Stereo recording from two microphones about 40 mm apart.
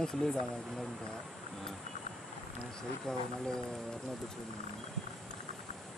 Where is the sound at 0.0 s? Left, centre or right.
Centre.